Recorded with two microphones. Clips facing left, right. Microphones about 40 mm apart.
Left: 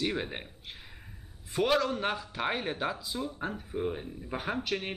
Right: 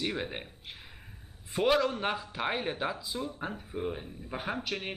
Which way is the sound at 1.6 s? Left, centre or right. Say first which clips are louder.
Right 1 dB; centre.